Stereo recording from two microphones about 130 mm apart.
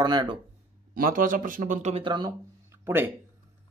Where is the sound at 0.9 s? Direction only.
90° right; by 2.0 s 70° right (ahead or behind).